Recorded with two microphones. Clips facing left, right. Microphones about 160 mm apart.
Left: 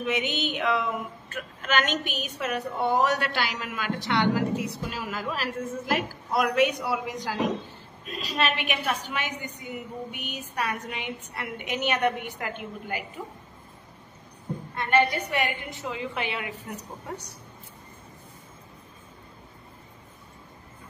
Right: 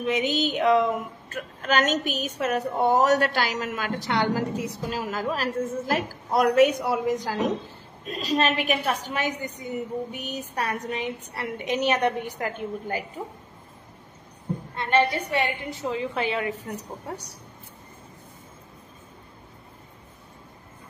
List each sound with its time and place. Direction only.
0.0 s a woman's voice: 35° right (ahead or behind)
14.8 s a woman's voice: 30° right (ahead or behind)